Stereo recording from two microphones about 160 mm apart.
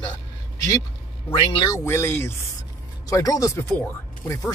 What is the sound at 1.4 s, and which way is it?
Speech, 25° left (ahead or behind).